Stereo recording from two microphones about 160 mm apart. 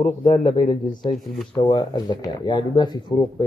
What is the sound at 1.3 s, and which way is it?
Speech, 5° left (ahead or behind).